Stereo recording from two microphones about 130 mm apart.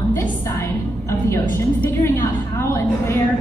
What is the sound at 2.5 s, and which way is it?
Speech, 20° left (ahead or behind).